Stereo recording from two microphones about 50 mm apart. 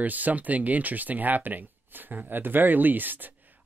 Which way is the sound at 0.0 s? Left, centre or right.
Right.